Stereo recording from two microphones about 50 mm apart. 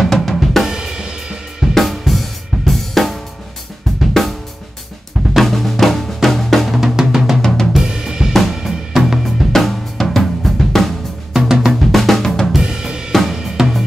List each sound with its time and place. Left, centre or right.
0.0 s drum kit: centre
0.7 s cymbal: centre
1.8 s drum kit: centre
4.1 s drum: centre
7.4 s drum kit: centre
7.7 s drum kit: centre
8.3 s drum kit: centre
8.6 s drum kit: centre
11.3 s drum: centre
11.9 s drum: centre
12.6 s drum kit: centre
13.1 s drum kit: centre
13.4 s drum kit: centre